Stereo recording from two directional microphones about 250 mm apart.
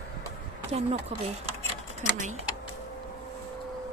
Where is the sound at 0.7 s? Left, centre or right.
Right.